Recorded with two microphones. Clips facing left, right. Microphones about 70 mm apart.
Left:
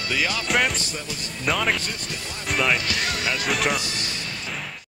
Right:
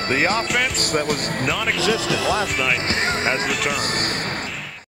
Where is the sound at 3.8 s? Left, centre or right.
Right.